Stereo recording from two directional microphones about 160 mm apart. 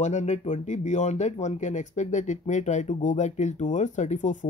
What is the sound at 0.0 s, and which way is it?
Speech, 45° left (ahead or behind).